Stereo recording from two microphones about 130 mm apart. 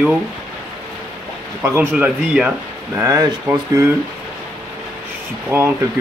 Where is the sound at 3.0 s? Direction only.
25° right (ahead or behind).